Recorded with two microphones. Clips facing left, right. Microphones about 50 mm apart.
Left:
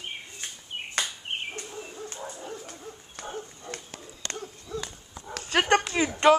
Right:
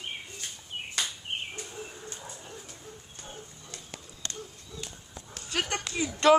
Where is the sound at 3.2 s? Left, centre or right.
Left.